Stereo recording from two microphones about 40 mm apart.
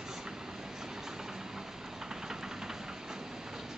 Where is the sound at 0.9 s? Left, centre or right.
Centre.